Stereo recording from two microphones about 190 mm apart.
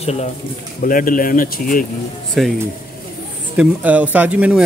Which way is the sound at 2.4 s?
Centre (ahead or behind).